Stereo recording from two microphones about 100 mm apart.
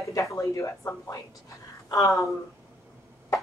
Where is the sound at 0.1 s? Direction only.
30° left (ahead or behind).